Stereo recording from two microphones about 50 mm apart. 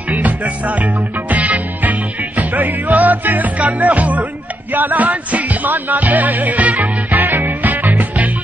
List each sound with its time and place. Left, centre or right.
0.1 s music: right